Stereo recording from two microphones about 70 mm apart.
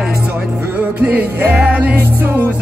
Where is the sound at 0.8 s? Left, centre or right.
Right.